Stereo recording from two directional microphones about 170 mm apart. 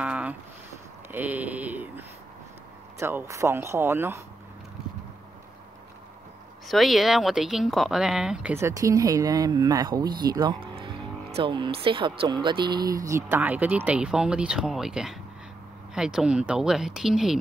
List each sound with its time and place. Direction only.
0.0 s a sound: 10° right (ahead or behind)
1.1 s speech: 10° right (ahead or behind)
6.7 s speech: centre (ahead or behind)